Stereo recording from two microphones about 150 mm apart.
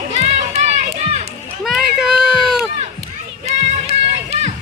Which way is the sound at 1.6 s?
Centre (ahead or behind).